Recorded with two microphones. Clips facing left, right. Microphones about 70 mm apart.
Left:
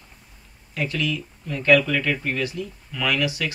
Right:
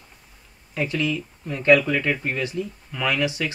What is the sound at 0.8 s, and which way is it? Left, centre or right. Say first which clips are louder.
Speech: right 1 dB; right.